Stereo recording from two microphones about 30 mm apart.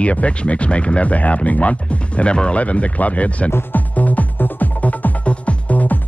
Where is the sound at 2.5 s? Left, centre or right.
Left.